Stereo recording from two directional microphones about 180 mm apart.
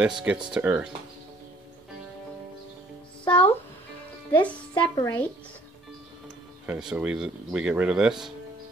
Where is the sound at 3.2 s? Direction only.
25° left (ahead or behind).